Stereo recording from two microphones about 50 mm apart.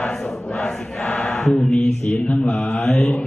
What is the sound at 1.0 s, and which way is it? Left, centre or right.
Mantra, left.